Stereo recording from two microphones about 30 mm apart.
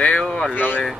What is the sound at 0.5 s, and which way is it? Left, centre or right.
Speech, left.